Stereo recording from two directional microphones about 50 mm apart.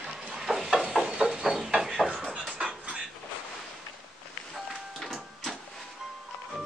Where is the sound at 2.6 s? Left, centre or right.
Right.